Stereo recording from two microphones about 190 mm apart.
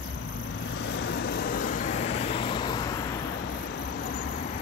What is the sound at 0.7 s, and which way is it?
Vehicle, 70° left (ahead or behind).